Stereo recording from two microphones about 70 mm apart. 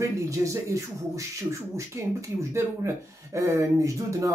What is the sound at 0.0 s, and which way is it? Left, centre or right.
Speech, right.